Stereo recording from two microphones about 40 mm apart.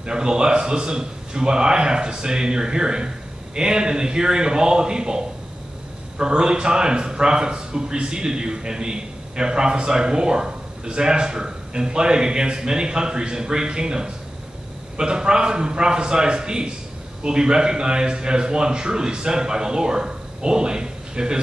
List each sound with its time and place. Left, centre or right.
0.0 s a man's voice: right